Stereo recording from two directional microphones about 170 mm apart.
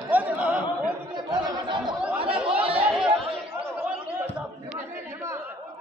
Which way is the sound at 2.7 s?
5° right (ahead or behind).